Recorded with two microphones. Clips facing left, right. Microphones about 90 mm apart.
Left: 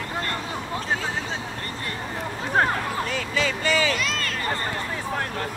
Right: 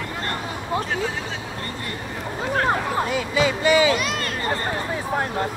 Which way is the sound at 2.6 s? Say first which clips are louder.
Right 4 dB; 25° right (ahead or behind).